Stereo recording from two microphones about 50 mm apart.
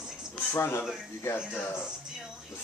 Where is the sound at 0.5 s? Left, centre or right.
Left.